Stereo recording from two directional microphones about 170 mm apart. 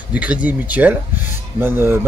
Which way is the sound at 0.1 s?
10° right (ahead or behind).